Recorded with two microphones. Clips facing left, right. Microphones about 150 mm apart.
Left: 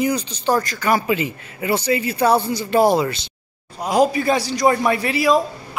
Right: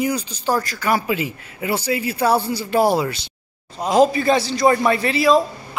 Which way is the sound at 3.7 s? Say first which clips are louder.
Right 2 dB; 10° left (ahead or behind).